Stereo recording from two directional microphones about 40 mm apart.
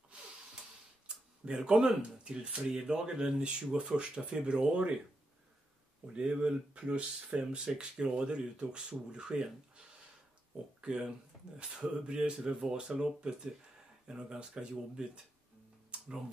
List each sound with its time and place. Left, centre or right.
1.0 s a sound: right
1.9 s speech: right
2.6 s speech: centre
6.1 s speech: right